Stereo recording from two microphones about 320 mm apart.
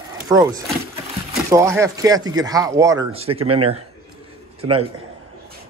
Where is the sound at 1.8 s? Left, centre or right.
Centre.